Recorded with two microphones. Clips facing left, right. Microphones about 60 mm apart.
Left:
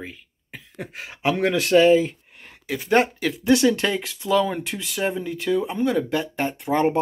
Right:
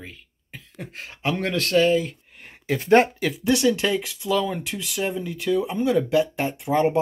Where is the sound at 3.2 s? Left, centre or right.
Centre.